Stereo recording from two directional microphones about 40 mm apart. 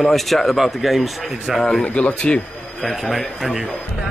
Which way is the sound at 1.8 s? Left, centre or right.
Left.